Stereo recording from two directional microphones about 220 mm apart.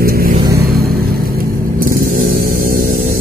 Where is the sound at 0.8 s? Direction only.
40° right (ahead or behind).